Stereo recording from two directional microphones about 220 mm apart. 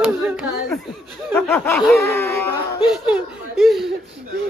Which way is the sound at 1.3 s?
10° left (ahead or behind).